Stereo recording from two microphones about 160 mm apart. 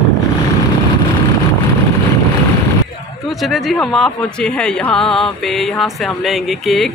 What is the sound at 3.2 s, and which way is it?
Speech, centre (ahead or behind).